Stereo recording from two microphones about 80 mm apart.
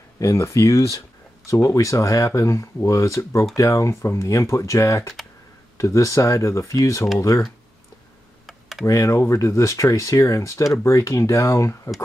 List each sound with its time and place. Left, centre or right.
0.2 s speech: left
8.5 s computer keyboard: centre
8.8 s speech: left